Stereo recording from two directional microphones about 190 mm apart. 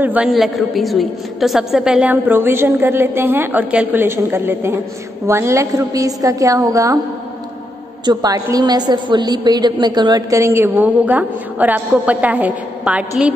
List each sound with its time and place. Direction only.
0.0 s a woman's voice: 5° right (ahead or behind)
8.0 s a woman's voice: 20° right (ahead or behind)